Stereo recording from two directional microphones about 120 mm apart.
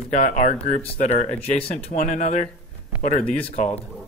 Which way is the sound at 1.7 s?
75° left (ahead or behind).